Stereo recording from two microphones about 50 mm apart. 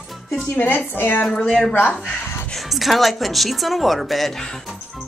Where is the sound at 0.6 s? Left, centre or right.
Left.